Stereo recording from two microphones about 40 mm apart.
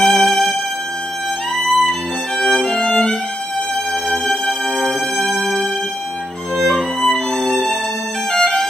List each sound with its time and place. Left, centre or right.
0.0 s music: centre
1.6 s violin: centre
4.1 s music: centre
7.0 s music: centre